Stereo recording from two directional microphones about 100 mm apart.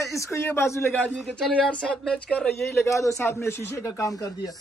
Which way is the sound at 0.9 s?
5° left (ahead or behind).